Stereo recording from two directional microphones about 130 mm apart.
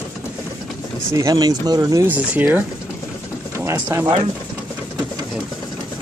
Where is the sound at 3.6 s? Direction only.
15° right (ahead or behind).